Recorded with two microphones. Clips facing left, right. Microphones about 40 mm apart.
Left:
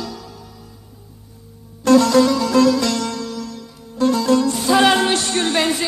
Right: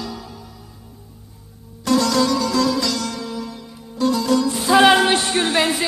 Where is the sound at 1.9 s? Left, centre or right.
Left.